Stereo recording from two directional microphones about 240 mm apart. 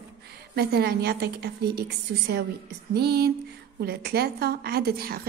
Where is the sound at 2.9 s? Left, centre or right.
Right.